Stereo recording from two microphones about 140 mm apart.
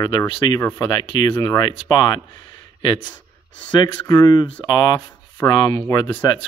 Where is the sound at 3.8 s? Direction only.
30° left (ahead or behind).